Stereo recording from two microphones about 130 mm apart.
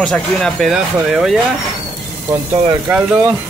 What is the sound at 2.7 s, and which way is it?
Speech, 15° right (ahead or behind).